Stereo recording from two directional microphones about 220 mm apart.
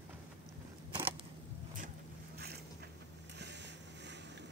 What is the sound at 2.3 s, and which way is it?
Boat, 45° right (ahead or behind).